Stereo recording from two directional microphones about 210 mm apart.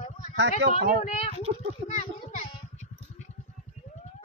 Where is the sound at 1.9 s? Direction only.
35° left (ahead or behind).